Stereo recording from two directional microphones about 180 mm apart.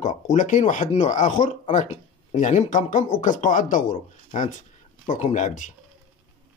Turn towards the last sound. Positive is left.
turn(degrees=45)  # may be behind; listen again after turning